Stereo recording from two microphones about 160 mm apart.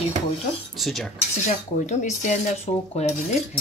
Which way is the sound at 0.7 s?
Centre (ahead or behind).